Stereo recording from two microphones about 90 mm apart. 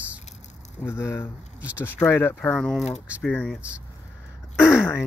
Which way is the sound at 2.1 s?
25° left (ahead or behind).